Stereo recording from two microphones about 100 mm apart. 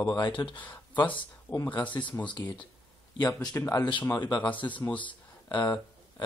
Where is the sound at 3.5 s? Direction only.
30° left (ahead or behind).